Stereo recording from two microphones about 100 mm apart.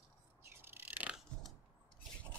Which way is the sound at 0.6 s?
20° right (ahead or behind).